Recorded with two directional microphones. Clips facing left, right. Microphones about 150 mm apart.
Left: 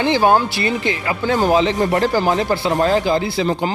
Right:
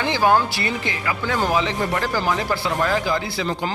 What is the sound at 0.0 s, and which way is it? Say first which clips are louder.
A man's voice: left 4 dB; 25° left (ahead or behind).